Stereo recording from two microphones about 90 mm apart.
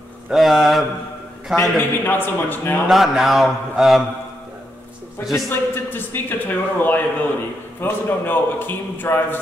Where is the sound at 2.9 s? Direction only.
Centre (ahead or behind).